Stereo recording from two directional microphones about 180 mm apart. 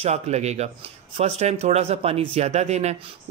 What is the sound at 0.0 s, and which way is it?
Speech, 35° right (ahead or behind).